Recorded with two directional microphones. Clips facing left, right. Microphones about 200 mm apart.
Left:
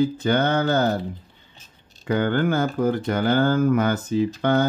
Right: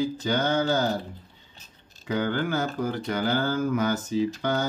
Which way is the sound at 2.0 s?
55° left (ahead or behind).